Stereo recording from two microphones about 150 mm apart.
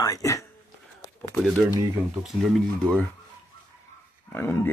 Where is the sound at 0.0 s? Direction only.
20° left (ahead or behind).